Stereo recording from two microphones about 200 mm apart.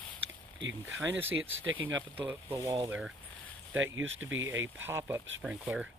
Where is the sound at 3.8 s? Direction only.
75° right (ahead or behind).